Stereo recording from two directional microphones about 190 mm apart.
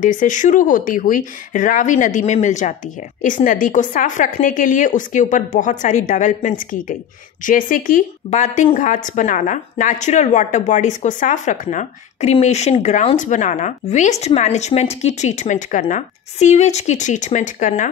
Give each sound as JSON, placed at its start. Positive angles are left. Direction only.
{"t": 0.0, "sound": "a woman's voice", "side_deg": 45}